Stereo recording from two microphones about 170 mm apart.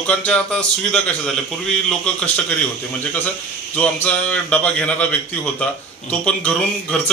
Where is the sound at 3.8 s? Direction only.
10° left (ahead or behind).